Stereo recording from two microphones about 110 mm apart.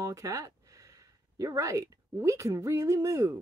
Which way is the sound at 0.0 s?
30° right (ahead or behind).